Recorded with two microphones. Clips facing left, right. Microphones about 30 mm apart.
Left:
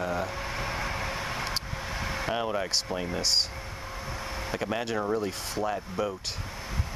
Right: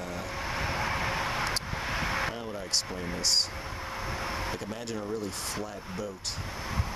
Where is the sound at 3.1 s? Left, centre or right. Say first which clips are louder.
Even; centre.